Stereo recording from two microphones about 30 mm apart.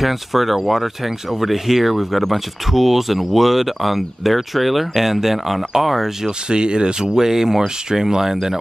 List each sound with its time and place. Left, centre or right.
0.0 s speech: centre
6.5 s speech: right